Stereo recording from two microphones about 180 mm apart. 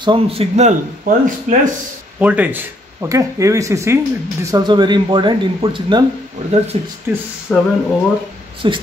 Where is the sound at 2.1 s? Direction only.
10° right (ahead or behind); by 6.9 s 35° right (ahead or behind).